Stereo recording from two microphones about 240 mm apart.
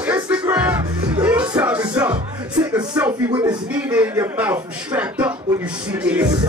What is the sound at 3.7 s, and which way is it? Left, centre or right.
Speech, centre.